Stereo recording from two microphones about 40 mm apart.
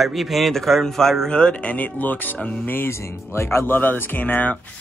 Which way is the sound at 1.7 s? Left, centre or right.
Left.